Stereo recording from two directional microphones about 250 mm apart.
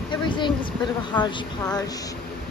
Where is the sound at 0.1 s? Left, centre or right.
Centre.